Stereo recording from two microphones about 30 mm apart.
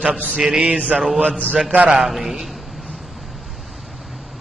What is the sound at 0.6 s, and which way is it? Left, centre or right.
Mantra, right.